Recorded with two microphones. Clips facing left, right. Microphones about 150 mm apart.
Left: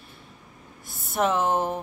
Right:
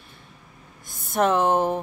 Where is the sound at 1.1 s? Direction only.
Centre (ahead or behind).